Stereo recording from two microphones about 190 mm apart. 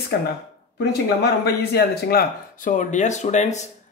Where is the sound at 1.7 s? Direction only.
55° left (ahead or behind).